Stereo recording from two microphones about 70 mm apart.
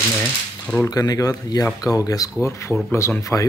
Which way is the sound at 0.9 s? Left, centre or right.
Left.